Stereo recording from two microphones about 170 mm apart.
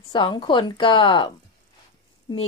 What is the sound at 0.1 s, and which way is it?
A woman's voice, 30° left (ahead or behind).